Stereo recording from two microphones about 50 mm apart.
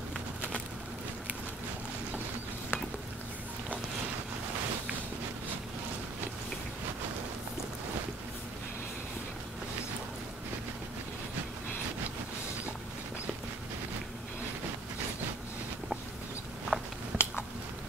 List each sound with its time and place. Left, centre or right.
16.7 s biting: centre
17.1 s biting: centre